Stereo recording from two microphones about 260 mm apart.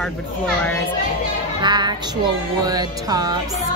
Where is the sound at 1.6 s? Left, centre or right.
Centre.